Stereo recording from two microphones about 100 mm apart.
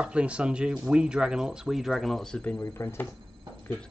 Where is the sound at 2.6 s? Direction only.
25° left (ahead or behind).